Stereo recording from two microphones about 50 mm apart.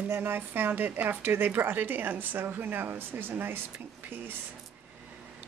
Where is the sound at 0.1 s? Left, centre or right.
Right.